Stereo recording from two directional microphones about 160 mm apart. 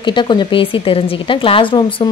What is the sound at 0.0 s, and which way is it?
Speech, 30° left (ahead or behind).